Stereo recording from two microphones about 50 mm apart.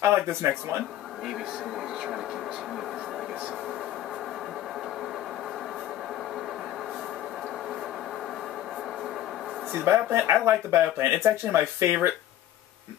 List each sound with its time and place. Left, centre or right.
0.0 s speech: right
9.7 s speech: right
11.2 s speech: right